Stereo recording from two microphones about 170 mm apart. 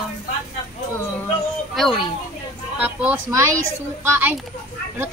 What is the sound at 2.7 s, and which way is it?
Speech, 10° right (ahead or behind).